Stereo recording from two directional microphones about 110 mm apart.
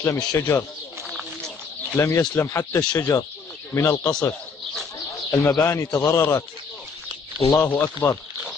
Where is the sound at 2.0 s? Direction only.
25° left (ahead or behind).